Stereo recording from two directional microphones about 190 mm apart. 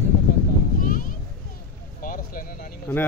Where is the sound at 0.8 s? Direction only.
45° left (ahead or behind).